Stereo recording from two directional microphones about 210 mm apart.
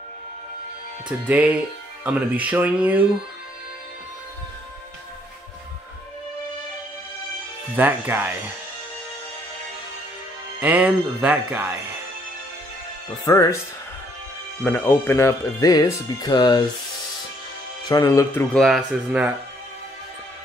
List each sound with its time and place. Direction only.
1.2 s speech: 5° right (ahead or behind)
7.7 s speech: 10° right (ahead or behind)
10.6 s speech: 5° right (ahead or behind)
13.2 s speech: 15° left (ahead or behind)
14.6 s speech: 10° left (ahead or behind)
17.8 s speech: 15° left (ahead or behind); by 19.3 s 5° right (ahead or behind)